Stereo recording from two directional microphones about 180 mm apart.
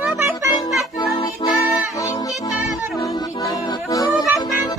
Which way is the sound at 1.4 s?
25° left (ahead or behind).